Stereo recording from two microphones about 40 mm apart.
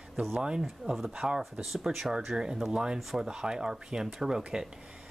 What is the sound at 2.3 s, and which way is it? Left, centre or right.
Speech, centre.